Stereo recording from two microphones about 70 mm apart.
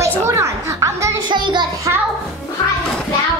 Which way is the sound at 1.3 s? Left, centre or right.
Right.